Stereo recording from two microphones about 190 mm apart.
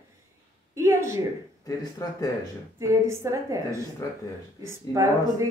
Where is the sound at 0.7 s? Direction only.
15° right (ahead or behind).